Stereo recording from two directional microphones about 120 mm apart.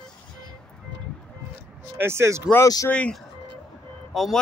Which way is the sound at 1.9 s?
20° right (ahead or behind).